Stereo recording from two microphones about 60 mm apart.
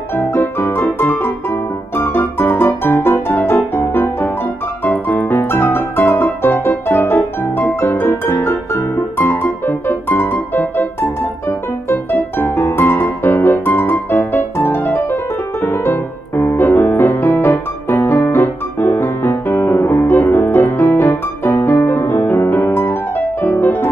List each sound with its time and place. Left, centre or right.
0.1 s music: left
5.0 s piano: left
11.4 s music: left
15.6 s piano: left